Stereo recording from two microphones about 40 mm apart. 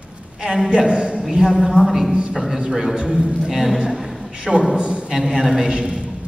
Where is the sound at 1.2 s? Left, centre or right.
Centre.